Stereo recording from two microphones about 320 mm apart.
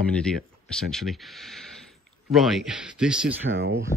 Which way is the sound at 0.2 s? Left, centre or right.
Centre.